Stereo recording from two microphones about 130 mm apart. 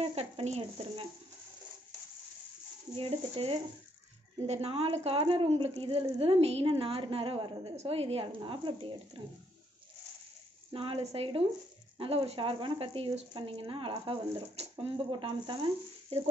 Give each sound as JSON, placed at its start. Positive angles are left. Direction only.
{"t": 0.0, "sound": "speech", "side_deg": -50}
{"t": 3.0, "sound": "speech", "side_deg": -45}
{"t": 7.7, "sound": "speech", "side_deg": -50}
{"t": 10.7, "sound": "speech", "side_deg": -45}